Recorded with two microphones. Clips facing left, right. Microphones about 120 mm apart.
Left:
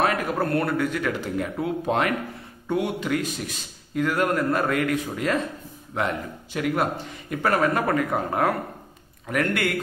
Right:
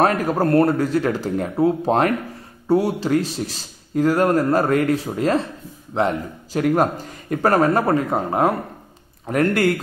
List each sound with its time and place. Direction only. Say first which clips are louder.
0.0 s a man's voice: right 5 dB; 40° right (ahead or behind); by 8.5 s 25° right (ahead or behind)
9.3 s a man's voice: right 6 dB; 35° right (ahead or behind)